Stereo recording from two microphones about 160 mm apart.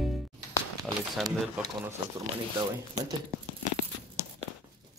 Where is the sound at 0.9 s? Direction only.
20° right (ahead or behind).